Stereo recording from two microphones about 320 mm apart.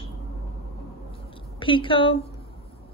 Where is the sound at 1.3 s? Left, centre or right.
Centre.